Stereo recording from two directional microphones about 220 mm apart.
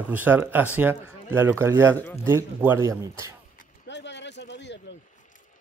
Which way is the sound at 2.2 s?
10° right (ahead or behind).